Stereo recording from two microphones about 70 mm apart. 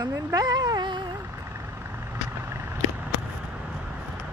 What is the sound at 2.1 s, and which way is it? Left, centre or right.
Vehicle, right.